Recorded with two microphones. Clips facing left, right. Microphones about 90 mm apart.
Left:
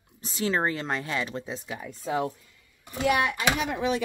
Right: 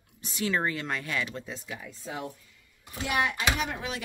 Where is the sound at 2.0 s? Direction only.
75° left (ahead or behind).